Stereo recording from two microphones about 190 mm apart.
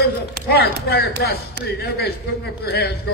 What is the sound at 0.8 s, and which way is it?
A man's voice, 60° left (ahead or behind).